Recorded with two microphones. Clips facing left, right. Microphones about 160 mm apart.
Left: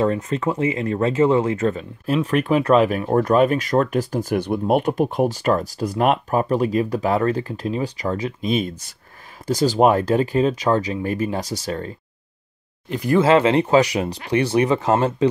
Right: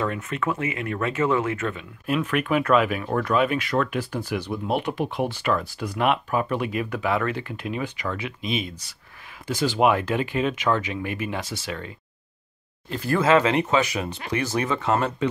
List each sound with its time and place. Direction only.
0.0 s speech: 35° left (ahead or behind)
12.9 s speech: 15° left (ahead or behind)
13.2 s speech: 30° left (ahead or behind)